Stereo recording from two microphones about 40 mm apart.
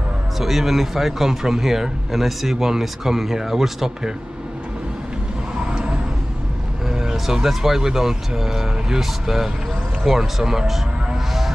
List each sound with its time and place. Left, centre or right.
0.4 s speech: centre
5.6 s vehicle: right
7.4 s speech: centre